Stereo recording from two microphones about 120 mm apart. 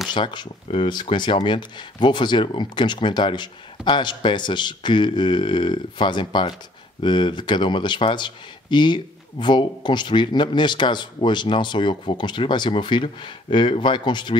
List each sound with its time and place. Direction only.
0.1 s speech: 40° left (ahead or behind)